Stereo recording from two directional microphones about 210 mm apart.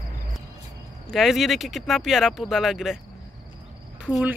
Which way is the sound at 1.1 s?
Centre (ahead or behind).